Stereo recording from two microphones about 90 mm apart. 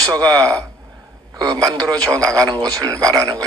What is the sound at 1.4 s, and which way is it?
Speech, 45° right (ahead or behind).